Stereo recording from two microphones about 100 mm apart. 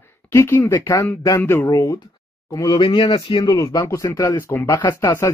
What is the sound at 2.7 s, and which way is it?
Speech, 60° left (ahead or behind).